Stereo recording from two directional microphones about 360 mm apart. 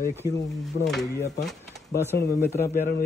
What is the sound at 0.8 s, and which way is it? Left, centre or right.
Speech, centre.